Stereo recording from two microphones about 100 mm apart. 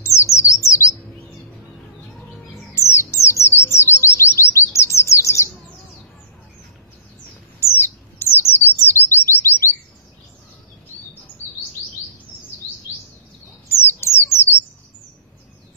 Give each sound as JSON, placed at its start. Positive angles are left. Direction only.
{"t": 0.0, "sound": "bird", "side_deg": 30}
{"t": 2.7, "sound": "bird", "side_deg": 25}
{"t": 7.6, "sound": "bird", "side_deg": 20}
{"t": 13.8, "sound": "bird", "side_deg": 25}